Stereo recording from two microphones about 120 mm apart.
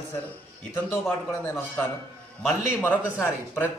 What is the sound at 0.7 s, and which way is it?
A man's voice, 20° left (ahead or behind).